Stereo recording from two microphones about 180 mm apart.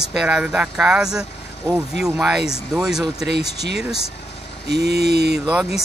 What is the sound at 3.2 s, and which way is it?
Speech, 70° right (ahead or behind).